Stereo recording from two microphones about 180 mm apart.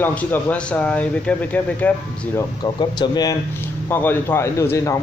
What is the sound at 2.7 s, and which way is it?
Speech, 25° left (ahead or behind).